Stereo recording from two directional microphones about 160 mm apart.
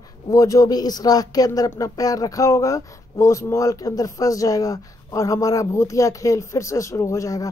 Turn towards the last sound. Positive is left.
turn(degrees=20)  # may be behind; listen again after turning